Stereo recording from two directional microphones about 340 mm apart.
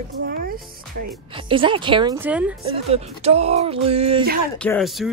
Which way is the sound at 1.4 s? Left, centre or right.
Centre.